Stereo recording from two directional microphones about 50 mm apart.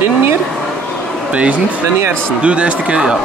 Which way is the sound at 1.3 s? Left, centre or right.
Right.